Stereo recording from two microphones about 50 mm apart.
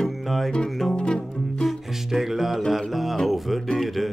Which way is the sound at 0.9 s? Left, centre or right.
Centre.